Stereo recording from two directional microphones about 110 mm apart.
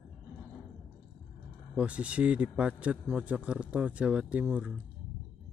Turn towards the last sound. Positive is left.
turn(degrees=-10)  # may be behind; listen again after turning